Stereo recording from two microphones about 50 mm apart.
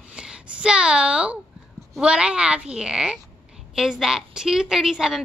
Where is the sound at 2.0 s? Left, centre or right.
Right.